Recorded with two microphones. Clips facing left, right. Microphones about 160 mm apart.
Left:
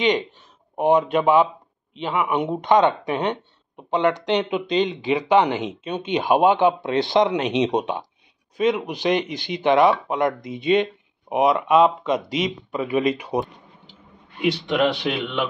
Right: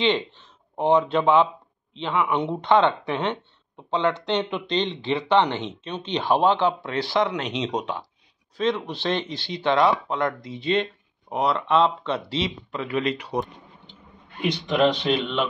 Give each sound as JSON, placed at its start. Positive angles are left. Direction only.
{"t": 0.0, "sound": "speech", "side_deg": 15}